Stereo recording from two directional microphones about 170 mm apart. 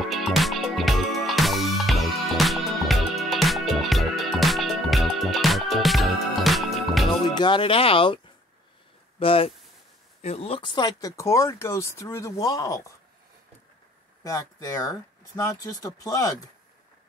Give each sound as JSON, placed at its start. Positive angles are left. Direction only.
{"t": 0.0, "sound": "music", "side_deg": 0}
{"t": 7.2, "sound": "speech", "side_deg": 30}
{"t": 9.2, "sound": "speech", "side_deg": 35}
{"t": 14.2, "sound": "speech", "side_deg": 20}